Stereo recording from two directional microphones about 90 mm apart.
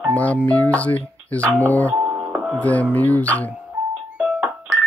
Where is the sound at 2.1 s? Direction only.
15° right (ahead or behind).